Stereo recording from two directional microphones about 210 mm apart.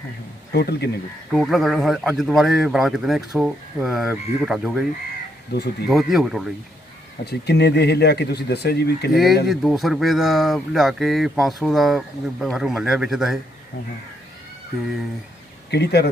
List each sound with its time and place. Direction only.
0.5 s speech: 50° left (ahead or behind)
1.3 s speech: centre (ahead or behind)
5.5 s speech: 50° left (ahead or behind)
5.9 s speech: centre (ahead or behind)
7.2 s speech: 50° left (ahead or behind)
9.1 s speech: centre (ahead or behind)
15.7 s speech: 50° left (ahead or behind)